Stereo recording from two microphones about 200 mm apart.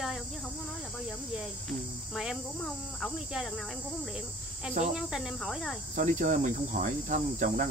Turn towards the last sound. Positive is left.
turn(degrees=-40)  # may be behind; listen again after turning